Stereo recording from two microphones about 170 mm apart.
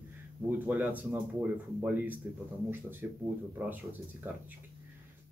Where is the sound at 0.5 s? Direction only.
10° right (ahead or behind).